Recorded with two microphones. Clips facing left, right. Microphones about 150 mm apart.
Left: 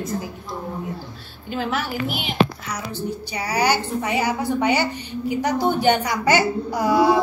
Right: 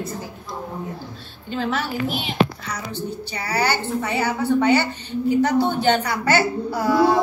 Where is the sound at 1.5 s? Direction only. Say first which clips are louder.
Right 1 dB; 10° left (ahead or behind).